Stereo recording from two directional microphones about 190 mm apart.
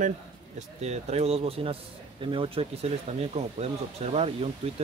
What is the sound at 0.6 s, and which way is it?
A man's voice, 35° right (ahead or behind).